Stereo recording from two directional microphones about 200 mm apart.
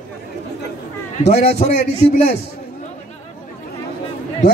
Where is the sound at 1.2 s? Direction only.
35° left (ahead or behind).